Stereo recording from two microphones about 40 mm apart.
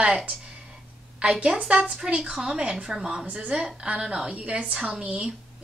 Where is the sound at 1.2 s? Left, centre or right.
Right.